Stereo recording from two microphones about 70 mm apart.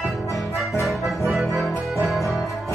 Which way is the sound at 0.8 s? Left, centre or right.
Centre.